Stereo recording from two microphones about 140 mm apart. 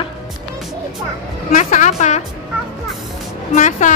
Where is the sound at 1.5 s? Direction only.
65° left (ahead or behind).